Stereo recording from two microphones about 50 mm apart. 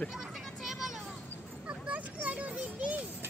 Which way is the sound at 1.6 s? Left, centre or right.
Right.